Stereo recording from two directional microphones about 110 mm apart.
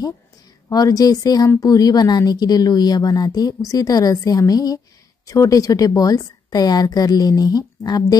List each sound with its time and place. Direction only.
0.7 s speech: 35° left (ahead or behind)